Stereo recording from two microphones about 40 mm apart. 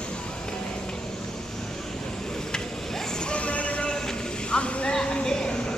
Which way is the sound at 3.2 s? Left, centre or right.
Left.